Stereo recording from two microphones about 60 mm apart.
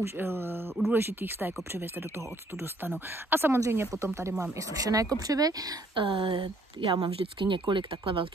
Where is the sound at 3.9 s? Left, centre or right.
Right.